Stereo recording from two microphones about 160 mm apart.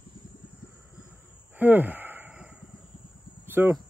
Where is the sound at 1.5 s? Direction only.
10° right (ahead or behind).